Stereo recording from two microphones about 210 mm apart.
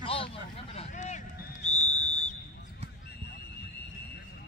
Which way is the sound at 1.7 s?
35° left (ahead or behind).